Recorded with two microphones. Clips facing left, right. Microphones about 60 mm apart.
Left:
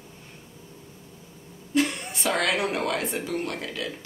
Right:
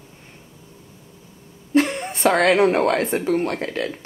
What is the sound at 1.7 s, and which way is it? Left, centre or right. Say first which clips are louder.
A woman's voice: right 6 dB; right.